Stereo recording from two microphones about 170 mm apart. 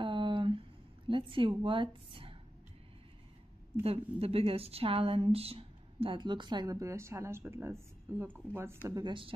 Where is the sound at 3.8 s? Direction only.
35° right (ahead or behind); by 8.8 s 15° right (ahead or behind).